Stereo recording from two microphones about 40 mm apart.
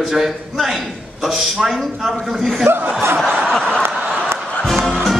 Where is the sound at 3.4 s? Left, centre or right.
Centre.